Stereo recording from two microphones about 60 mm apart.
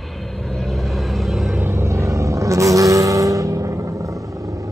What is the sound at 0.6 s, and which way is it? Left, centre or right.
Vehicle, centre.